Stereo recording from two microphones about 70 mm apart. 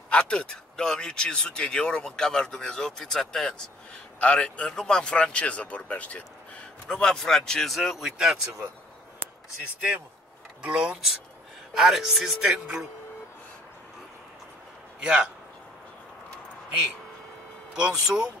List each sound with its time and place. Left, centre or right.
0.1 s speech: centre
10.6 s speech: centre
15.0 s a man's voice: centre
17.7 s speech: centre